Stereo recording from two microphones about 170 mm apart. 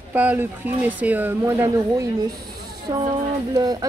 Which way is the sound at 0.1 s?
10° right (ahead or behind).